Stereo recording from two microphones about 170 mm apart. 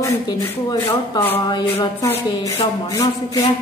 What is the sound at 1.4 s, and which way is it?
Speech, 25° left (ahead or behind).